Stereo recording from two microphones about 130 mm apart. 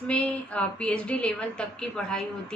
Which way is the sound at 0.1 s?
10° left (ahead or behind).